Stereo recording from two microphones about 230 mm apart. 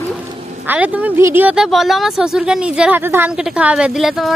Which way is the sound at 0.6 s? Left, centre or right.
Centre.